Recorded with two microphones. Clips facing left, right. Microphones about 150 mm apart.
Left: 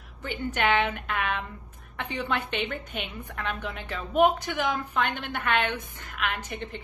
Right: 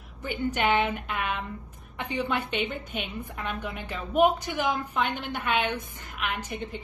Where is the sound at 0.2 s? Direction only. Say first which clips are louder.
Right 1 dB; 10° right (ahead or behind).